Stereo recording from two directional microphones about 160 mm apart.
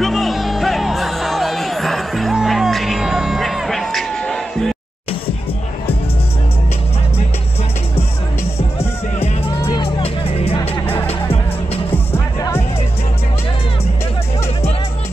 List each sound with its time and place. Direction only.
0.0 s music: centre (ahead or behind)
9.7 s music: 30° left (ahead or behind)
10.6 s music: 15° left (ahead or behind)